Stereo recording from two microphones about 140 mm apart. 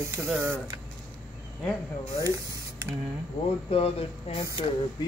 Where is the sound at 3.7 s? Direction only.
45° left (ahead or behind).